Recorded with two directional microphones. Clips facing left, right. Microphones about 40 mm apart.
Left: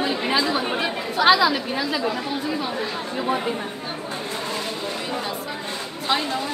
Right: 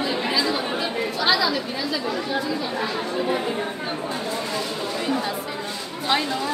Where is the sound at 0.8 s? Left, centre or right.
Left.